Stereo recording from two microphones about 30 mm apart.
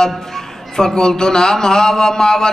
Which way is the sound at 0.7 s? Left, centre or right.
Left.